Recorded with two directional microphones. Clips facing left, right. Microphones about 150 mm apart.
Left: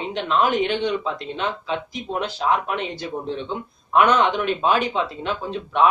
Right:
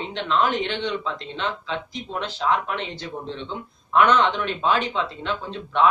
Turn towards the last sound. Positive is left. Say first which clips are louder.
# left 2 dB
turn(degrees=10)  # may be behind; listen again after turning